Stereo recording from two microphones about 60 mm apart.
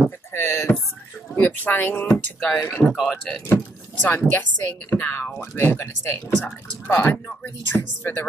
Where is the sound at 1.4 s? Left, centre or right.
Left.